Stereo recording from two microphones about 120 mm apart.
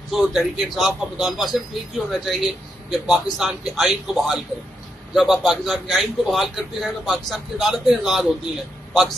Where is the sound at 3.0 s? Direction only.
Centre (ahead or behind).